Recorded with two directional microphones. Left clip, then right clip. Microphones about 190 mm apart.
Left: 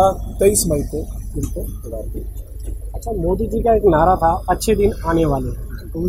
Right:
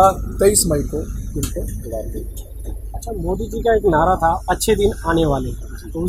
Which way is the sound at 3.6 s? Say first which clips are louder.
Left 1 dB; 30° left (ahead or behind).